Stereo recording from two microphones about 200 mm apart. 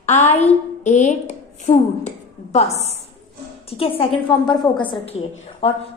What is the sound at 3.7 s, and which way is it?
A woman's voice, 30° left (ahead or behind).